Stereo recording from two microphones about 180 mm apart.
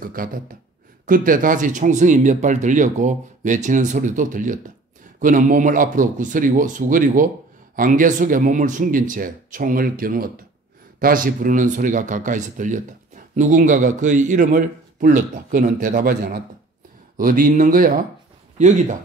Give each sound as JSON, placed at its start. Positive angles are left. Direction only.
{"t": 0.0, "sound": "speech", "side_deg": -55}